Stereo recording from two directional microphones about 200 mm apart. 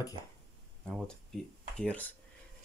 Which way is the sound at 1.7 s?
5° left (ahead or behind).